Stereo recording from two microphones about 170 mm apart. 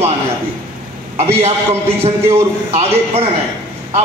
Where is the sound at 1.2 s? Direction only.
35° right (ahead or behind).